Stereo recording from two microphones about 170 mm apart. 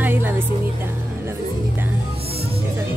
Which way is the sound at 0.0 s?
10° right (ahead or behind).